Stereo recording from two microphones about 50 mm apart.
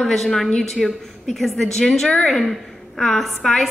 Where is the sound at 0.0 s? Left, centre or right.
Centre.